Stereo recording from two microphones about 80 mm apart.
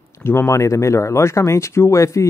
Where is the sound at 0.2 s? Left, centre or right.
Left.